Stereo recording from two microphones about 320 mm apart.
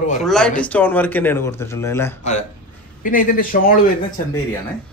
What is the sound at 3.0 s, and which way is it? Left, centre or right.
A man's voice, left.